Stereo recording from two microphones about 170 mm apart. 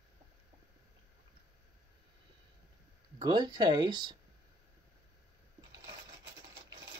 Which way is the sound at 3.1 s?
25° right (ahead or behind).